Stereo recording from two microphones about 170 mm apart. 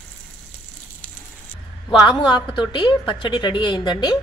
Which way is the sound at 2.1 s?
25° left (ahead or behind).